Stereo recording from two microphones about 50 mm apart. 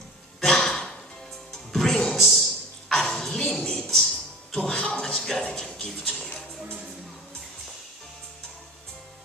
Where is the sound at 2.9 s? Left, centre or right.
Centre.